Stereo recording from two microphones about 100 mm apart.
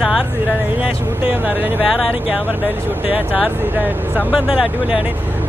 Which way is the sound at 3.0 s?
15° right (ahead or behind).